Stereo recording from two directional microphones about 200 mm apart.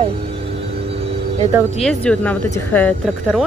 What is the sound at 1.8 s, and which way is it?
Speech, 5° left (ahead or behind).